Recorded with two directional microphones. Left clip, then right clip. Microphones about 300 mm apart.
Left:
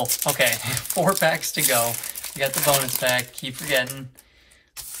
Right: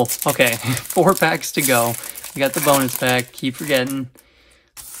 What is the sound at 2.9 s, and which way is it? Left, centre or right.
Speech, centre.